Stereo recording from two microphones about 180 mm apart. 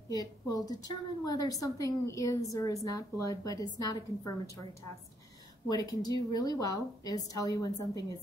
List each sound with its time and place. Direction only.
0.1 s a woman's voice: 20° left (ahead or behind)
5.7 s a woman's voice: 20° left (ahead or behind)